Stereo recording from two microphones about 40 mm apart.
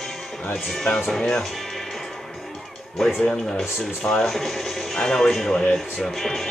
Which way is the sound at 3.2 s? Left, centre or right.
Left.